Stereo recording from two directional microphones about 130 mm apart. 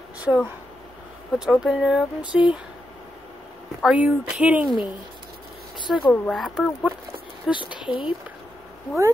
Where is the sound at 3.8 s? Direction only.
10° right (ahead or behind).